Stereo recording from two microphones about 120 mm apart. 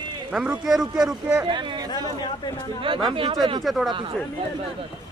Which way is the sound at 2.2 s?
40° left (ahead or behind).